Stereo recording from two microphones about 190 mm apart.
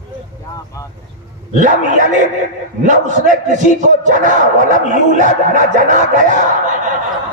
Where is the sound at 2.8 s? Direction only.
40° right (ahead or behind).